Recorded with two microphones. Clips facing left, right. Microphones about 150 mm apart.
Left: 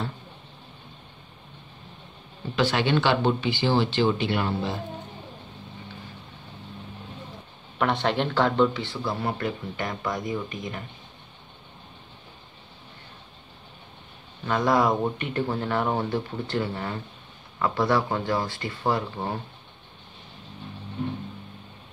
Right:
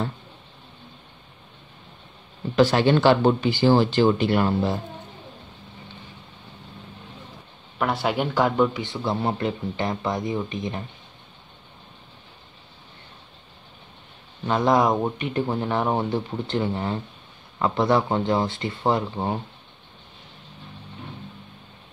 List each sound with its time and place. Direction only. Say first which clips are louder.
2.5 s speech: right 5 dB; 40° right (ahead or behind)
7.8 s speech: even; 5° right (ahead or behind); by 10.8 s 25° right (ahead or behind)
14.4 s speech: right 2 dB; 20° right (ahead or behind)